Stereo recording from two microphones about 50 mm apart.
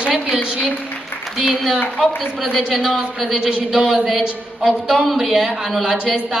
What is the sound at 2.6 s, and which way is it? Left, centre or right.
A woman's voice, centre.